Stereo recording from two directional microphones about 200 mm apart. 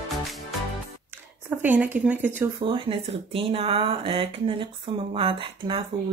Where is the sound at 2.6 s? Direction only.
25° right (ahead or behind).